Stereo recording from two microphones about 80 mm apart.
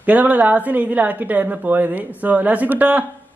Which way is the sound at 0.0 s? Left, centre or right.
Right.